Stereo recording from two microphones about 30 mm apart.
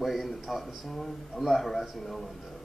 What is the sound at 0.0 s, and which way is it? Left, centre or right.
A man's voice, centre.